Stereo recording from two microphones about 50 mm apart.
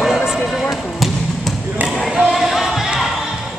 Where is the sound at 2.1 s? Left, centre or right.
Centre.